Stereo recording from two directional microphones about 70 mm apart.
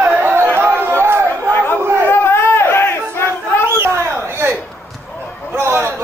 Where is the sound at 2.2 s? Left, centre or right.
Left.